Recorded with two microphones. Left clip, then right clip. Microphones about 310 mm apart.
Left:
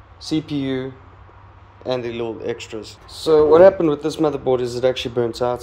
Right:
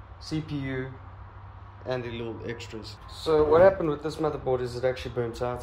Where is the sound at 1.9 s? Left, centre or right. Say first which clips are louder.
Left 9 dB; centre.